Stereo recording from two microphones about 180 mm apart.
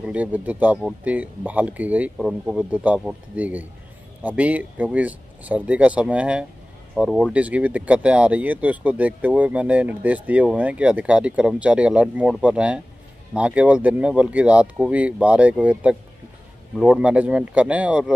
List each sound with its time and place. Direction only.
0.0 s speech: 10° right (ahead or behind)